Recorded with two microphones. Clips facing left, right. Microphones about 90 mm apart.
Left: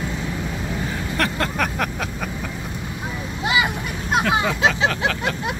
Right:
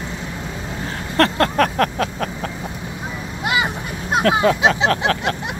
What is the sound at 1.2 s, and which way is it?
Vehicle, 65° right (ahead or behind).